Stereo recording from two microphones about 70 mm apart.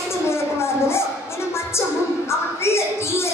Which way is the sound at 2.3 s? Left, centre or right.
Left.